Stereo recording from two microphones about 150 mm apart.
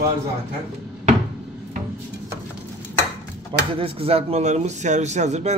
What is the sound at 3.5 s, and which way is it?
Speech, 40° right (ahead or behind).